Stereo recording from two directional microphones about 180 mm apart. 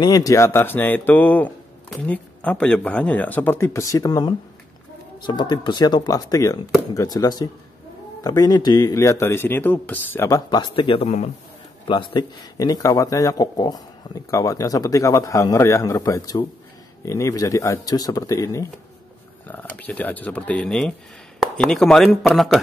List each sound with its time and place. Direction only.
0.0 s speech: 20° left (ahead or behind); by 22.6 s centre (ahead or behind)